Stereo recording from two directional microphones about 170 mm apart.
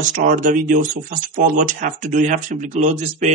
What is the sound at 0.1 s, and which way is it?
Speech, 50° right (ahead or behind).